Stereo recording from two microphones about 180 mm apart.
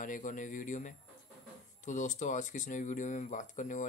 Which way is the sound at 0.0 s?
45° left (ahead or behind).